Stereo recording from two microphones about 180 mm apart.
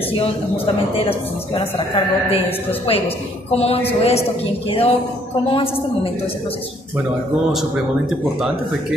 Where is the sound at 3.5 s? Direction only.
35° left (ahead or behind).